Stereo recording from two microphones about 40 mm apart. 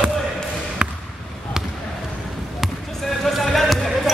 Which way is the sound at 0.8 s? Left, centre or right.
Right.